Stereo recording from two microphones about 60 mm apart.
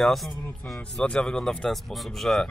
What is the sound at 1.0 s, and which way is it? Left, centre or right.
Speech, centre.